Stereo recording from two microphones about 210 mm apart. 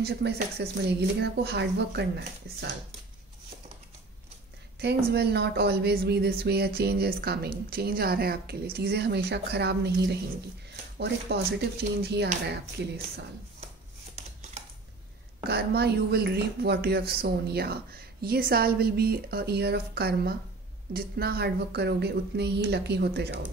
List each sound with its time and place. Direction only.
0.0 s a woman's voice: 50° right (ahead or behind)
4.7 s a woman's voice: 50° right (ahead or behind)
15.4 s a woman's voice: 50° right (ahead or behind)